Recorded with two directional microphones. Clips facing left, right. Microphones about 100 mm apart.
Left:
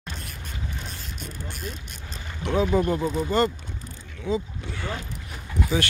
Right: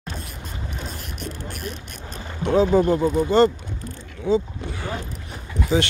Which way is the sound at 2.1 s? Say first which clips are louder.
Right 6 dB; 30° right (ahead or behind).